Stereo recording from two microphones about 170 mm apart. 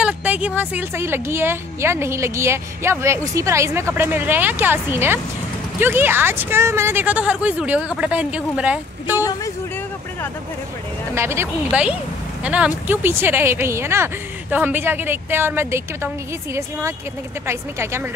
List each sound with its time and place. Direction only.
0.0 s a sound: 10° right (ahead or behind)
0.6 s a woman's voice: 15° right (ahead or behind)
9.2 s speech: 20° left (ahead or behind)
11.1 s a woman's voice: 15° right (ahead or behind)
17.5 s a woman's voice: 15° right (ahead or behind)